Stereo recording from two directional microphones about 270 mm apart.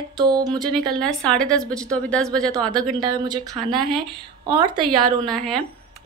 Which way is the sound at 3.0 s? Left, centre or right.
Centre.